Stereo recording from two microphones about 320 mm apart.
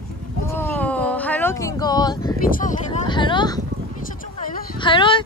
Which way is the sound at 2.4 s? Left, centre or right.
Left.